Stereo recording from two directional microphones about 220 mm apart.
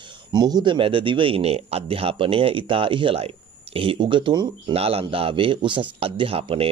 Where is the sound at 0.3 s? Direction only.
20° right (ahead or behind).